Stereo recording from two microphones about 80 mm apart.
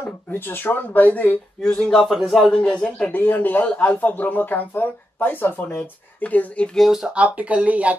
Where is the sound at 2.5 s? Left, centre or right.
Centre.